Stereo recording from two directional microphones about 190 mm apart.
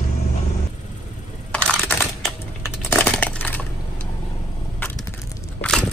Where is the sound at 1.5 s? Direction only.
5° left (ahead or behind).